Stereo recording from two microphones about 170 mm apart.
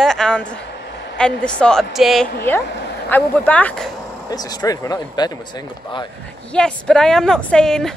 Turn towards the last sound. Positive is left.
turn(degrees=5)  # may be behind; listen again after turning